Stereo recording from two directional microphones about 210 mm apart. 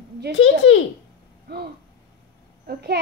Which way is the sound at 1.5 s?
50° right (ahead or behind).